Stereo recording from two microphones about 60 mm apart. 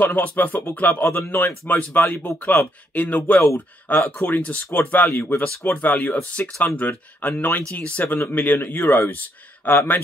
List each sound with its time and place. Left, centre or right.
0.0 s speech: left